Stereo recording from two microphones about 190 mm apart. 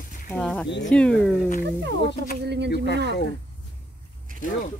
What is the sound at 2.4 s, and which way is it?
Speech, 65° right (ahead or behind).